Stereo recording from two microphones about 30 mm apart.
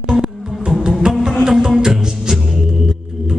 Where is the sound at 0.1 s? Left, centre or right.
Centre.